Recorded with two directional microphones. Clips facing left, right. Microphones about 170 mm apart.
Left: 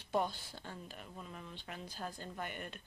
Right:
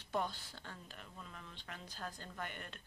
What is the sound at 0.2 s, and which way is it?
Speech, 15° left (ahead or behind).